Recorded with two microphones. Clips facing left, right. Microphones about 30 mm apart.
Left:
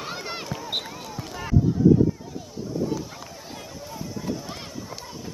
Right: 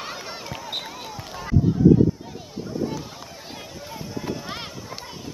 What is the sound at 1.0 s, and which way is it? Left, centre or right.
Basketball bounce, centre.